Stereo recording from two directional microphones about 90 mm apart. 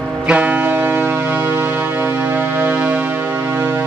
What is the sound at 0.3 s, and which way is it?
Music, 15° right (ahead or behind).